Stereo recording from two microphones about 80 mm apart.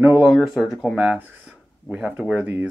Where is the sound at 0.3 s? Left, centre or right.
Centre.